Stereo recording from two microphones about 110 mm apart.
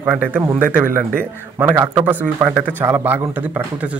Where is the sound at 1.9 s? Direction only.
15° right (ahead or behind).